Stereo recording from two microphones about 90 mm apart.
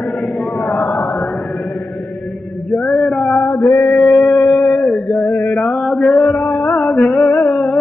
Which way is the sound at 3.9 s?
Centre (ahead or behind).